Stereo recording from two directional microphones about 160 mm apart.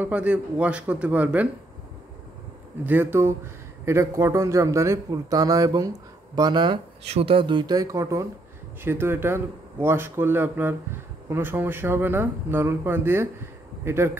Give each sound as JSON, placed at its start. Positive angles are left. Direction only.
{"t": 0.0, "sound": "speech", "side_deg": -10}
{"t": 2.8, "sound": "a man's voice", "side_deg": -10}